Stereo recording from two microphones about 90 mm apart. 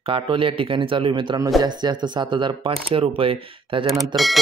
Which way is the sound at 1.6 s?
55° right (ahead or behind).